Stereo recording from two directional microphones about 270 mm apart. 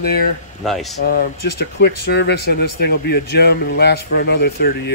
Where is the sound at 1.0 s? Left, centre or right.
Left.